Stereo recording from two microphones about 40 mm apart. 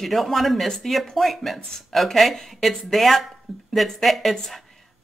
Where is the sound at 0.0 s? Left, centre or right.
Centre.